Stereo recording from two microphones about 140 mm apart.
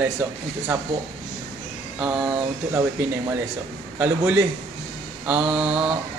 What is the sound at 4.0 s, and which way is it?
Speech, 10° right (ahead or behind).